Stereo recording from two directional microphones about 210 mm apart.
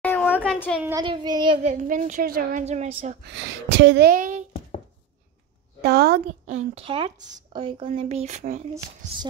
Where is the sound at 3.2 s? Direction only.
55° right (ahead or behind); by 4.4 s 40° right (ahead or behind).